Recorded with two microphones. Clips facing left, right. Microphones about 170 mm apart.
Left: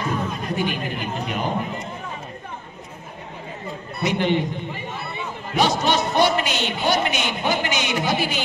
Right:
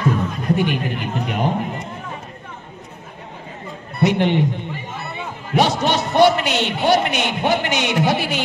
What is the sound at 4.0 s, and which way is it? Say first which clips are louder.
Speech: right 4 dB; 65° right (ahead or behind).